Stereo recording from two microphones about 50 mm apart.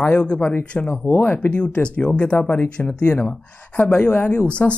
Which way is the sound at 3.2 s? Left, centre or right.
Left.